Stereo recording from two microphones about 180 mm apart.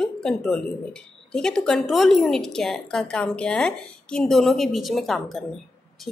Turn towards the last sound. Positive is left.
turn(degrees=0)  # may be behind; listen again after turning